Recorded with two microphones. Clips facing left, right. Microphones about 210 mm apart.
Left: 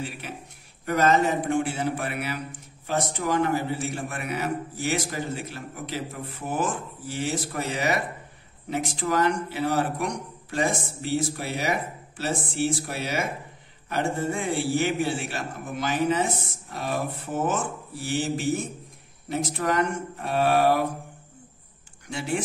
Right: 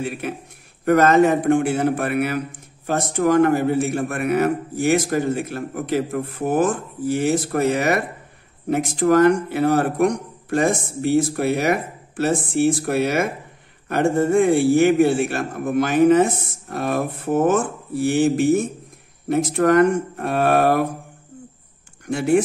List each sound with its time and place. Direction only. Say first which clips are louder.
0.8 s a man's voice: right 7 dB; 55° right (ahead or behind)
22.0 s speech: right 11 dB; 55° right (ahead or behind)